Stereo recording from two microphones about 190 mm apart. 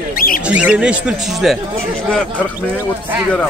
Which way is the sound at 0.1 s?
50° left (ahead or behind).